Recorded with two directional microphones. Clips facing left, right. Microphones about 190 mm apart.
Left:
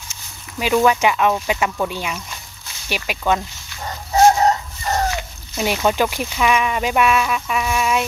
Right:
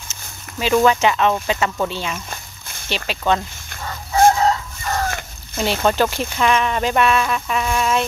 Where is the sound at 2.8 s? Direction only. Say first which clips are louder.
Even; 10° left (ahead or behind).